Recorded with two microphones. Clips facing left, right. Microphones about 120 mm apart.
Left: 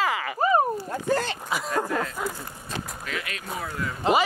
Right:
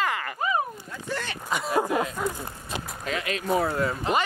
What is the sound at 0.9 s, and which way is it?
Speech, 45° left (ahead or behind).